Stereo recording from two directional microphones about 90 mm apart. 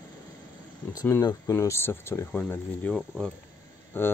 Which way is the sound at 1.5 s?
30° left (ahead or behind).